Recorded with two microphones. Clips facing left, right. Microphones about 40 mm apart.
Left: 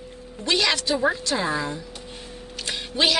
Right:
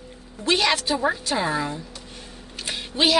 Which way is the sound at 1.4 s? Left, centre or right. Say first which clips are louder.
Right 1 dB; centre.